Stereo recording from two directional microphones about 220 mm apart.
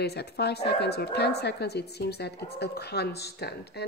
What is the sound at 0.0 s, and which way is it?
Speech, 50° left (ahead or behind).